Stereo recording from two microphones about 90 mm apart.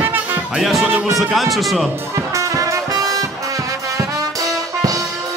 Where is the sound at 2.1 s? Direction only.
35° right (ahead or behind).